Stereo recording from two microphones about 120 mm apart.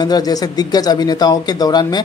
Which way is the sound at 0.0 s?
35° left (ahead or behind).